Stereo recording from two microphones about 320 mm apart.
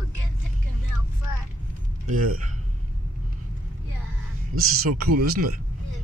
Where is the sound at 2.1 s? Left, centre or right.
Right.